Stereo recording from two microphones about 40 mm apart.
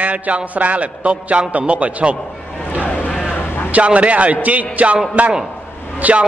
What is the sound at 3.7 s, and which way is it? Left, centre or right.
A man's voice, right.